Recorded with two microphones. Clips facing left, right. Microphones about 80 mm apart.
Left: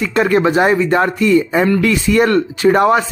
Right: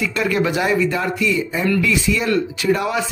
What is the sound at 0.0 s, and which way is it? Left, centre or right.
A man's voice, left.